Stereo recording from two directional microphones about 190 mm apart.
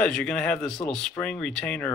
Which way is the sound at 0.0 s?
5° left (ahead or behind).